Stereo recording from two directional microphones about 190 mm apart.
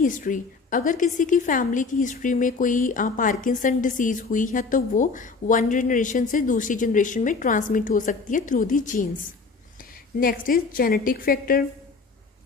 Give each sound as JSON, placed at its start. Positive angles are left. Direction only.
{"t": 0.0, "sound": "a woman's voice", "side_deg": 45}